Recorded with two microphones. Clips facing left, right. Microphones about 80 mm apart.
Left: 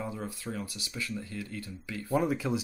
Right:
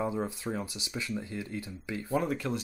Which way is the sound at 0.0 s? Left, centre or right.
Right.